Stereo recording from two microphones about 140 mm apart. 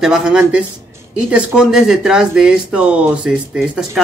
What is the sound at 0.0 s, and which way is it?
Speech, 5° right (ahead or behind).